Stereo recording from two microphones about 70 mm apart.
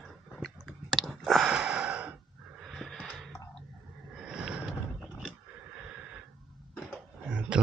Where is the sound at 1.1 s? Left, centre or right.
Centre.